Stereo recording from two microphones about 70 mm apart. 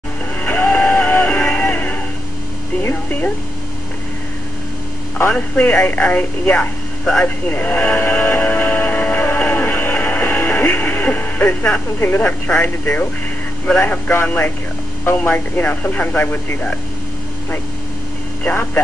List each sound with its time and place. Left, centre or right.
0.4 s music: left
2.8 s a sound: left
5.3 s speech: centre
7.4 s music: left
12.3 s speech: left
14.2 s speech: left
18.4 s speech: left